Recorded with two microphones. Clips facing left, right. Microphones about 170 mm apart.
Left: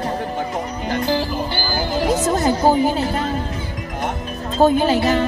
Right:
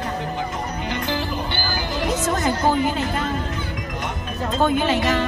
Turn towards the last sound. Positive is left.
turn(degrees=35)  # may be behind; listen again after turning